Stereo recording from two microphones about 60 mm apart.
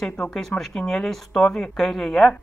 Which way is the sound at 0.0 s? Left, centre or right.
Centre.